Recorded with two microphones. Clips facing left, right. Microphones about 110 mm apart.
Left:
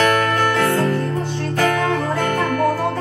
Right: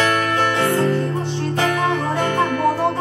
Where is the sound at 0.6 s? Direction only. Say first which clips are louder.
Even; 25° right (ahead or behind).